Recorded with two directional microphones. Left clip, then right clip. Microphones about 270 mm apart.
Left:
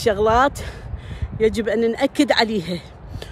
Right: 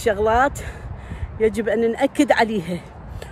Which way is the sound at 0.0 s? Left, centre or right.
Centre.